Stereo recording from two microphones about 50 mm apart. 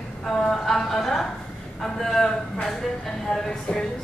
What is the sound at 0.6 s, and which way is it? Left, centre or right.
A woman's voice, centre.